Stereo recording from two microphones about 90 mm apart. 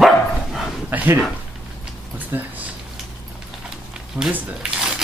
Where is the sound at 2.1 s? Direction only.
20° right (ahead or behind).